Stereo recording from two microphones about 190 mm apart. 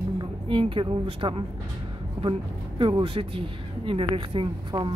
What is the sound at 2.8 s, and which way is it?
Speech, 25° right (ahead or behind).